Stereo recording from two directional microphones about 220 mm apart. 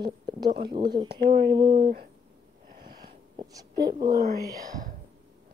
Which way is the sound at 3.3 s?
15° right (ahead or behind).